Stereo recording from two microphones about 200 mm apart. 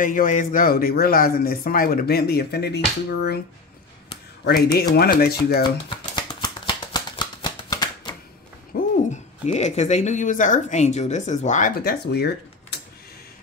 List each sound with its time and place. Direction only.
0.0 s speech: 40° left (ahead or behind)
4.5 s speech: 50° left (ahead or behind)
5.6 s shuffling cards: 20° left (ahead or behind)
8.7 s a sound: 45° left (ahead or behind)
9.1 s speech: 35° left (ahead or behind); by 12.8 s 55° left (ahead or behind)